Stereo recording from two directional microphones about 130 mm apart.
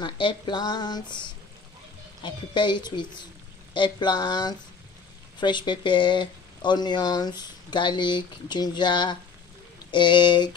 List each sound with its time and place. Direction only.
0.0 s speech: 35° left (ahead or behind)